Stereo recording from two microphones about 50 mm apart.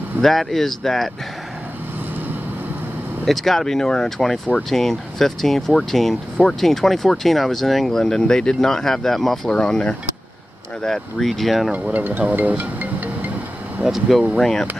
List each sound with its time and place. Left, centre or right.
0.2 s speech: centre
3.3 s speech: centre
9.5 s speech: centre
11.9 s speech: right
12.2 s music: right
13.8 s speech: centre
14.4 s speech: centre